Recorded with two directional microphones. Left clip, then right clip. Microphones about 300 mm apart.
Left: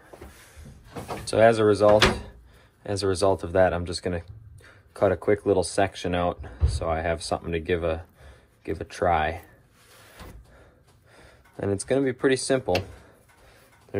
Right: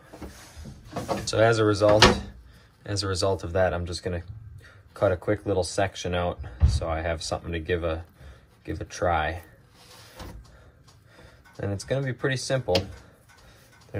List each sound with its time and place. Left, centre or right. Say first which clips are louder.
1.2 s speech: left 3 dB; left
11.1 s speech: left 3 dB; left